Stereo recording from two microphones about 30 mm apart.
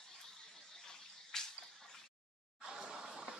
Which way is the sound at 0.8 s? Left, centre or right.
Centre.